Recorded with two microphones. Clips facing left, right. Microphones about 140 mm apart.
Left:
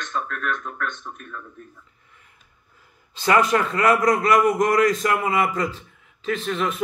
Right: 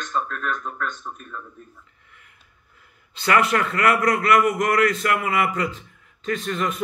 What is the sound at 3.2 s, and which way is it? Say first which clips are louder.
A man's voice: left 1 dB; 30° left (ahead or behind).